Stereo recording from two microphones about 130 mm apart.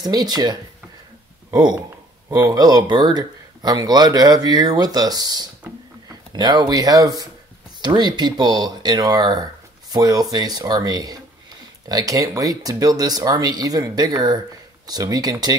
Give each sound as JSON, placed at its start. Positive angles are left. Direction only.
{"t": 0.0, "sound": "speech", "side_deg": -30}